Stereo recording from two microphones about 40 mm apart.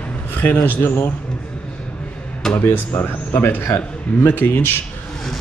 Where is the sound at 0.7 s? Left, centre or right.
Left.